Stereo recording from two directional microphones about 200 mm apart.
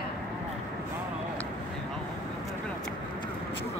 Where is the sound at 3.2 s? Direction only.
25° left (ahead or behind).